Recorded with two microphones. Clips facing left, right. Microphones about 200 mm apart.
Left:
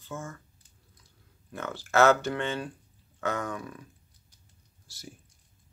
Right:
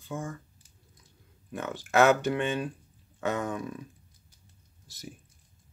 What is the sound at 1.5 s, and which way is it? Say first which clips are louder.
Speech: right 2 dB; 15° right (ahead or behind).